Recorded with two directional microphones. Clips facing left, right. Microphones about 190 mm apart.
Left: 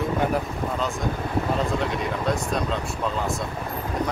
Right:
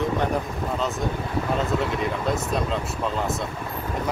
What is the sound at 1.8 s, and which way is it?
Speech, centre (ahead or behind).